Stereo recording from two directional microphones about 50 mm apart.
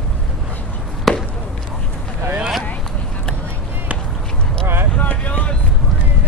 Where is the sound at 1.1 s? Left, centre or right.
Centre.